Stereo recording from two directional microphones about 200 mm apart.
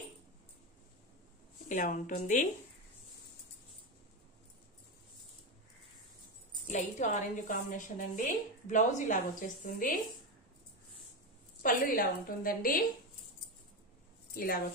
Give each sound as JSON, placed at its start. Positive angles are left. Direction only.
{"t": 1.7, "sound": "a woman's voice", "side_deg": 40}
{"t": 6.7, "sound": "a woman's voice", "side_deg": 35}
{"t": 11.6, "sound": "a woman's voice", "side_deg": 45}
{"t": 14.3, "sound": "speech", "side_deg": 50}